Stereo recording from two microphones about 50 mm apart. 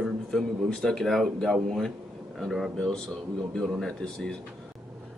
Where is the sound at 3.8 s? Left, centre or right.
Centre.